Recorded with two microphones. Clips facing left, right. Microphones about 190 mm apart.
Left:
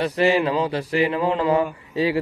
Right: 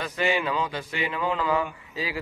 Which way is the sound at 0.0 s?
35° left (ahead or behind).